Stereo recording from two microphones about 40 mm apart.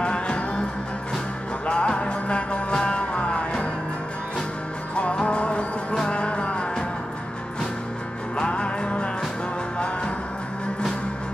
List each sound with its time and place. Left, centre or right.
0.0 s music: left
1.7 s music: left
4.9 s music: left
8.4 s music: left